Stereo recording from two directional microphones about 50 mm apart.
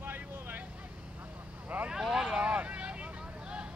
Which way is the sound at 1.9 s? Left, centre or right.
Centre.